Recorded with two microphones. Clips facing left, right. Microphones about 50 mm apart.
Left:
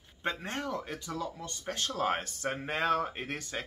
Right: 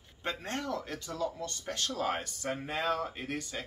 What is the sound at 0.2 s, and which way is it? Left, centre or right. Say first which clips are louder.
Speech: left 1 dB; centre.